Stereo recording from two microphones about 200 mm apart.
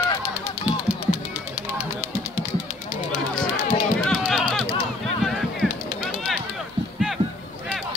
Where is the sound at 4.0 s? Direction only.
5° left (ahead or behind).